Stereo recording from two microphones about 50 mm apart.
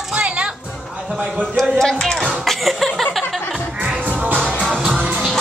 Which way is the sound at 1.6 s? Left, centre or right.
Centre.